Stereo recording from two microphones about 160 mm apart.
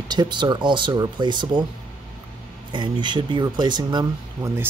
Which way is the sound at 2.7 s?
30° right (ahead or behind).